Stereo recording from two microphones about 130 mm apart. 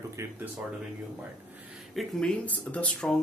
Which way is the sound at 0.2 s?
20° right (ahead or behind).